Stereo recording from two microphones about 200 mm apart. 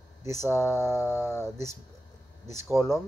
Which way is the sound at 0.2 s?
15° right (ahead or behind).